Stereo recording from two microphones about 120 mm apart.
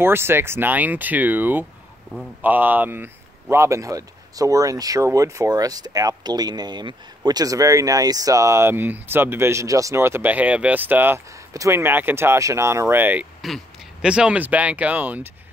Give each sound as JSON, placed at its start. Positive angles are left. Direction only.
{"t": 0.0, "sound": "speech", "side_deg": -20}